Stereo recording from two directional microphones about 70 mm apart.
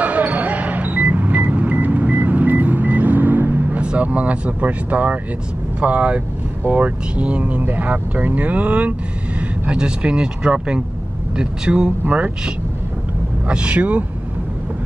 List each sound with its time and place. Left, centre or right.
0.0 s basketball bounce: right
3.8 s speech: centre